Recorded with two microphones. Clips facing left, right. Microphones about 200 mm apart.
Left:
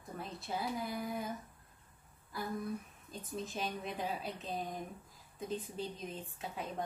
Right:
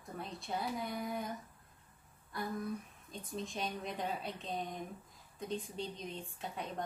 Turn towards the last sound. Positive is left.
turn(degrees=0)  # may be behind; listen again after turning